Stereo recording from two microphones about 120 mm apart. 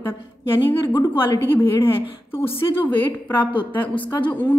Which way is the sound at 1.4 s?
15° left (ahead or behind).